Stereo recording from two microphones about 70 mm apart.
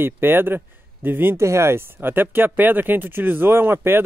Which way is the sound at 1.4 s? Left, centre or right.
Right.